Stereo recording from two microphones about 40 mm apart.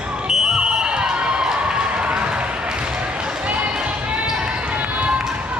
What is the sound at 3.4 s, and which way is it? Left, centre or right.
Basketball bounce, right.